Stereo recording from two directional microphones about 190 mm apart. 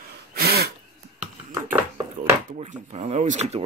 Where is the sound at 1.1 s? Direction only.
10° right (ahead or behind).